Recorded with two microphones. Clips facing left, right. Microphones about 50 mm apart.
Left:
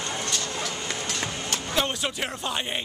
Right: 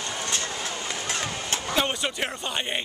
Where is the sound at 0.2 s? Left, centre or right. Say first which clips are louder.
Even; right.